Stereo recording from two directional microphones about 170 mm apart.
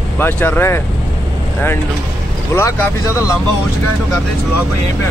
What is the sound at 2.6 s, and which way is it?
Speech, 15° left (ahead or behind).